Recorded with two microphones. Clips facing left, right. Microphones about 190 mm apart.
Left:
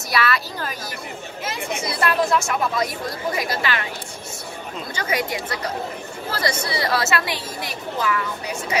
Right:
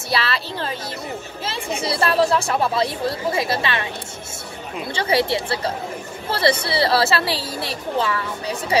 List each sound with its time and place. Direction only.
0.1 s speech: 30° right (ahead or behind)
4.9 s a woman's voice: 30° right (ahead or behind)